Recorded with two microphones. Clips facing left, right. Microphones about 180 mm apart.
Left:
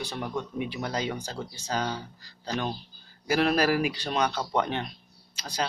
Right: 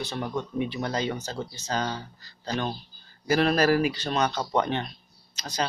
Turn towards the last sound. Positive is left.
turn(degrees=10)  # may be behind; listen again after turning